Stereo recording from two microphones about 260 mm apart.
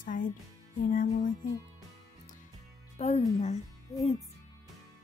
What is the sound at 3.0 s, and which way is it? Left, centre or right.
A woman's voice, left.